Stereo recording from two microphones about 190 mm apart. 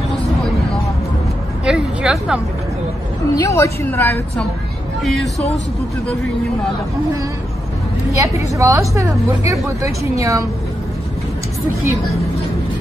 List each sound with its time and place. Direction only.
1.6 s a woman's voice: 5° right (ahead or behind)
3.3 s a woman's voice: 15° left (ahead or behind)
5.0 s speech: centre (ahead or behind)
8.2 s a woman's voice: 15° right (ahead or behind)